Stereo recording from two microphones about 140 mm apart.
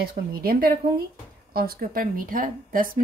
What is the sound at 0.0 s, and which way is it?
Speech, 90° right.